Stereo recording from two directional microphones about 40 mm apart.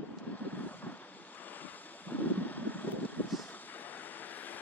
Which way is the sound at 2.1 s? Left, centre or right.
Left.